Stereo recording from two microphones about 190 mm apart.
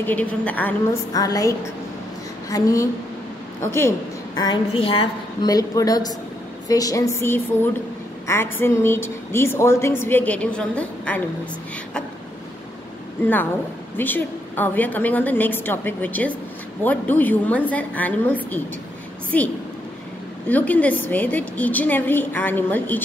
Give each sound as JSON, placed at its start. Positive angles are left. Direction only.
{"t": 0.0, "sound": "a woman's voice", "side_deg": 10}
{"t": 2.5, "sound": "a woman's voice", "side_deg": 15}
{"t": 4.4, "sound": "a woman's voice", "side_deg": 25}
{"t": 13.9, "sound": "a woman's voice", "side_deg": 10}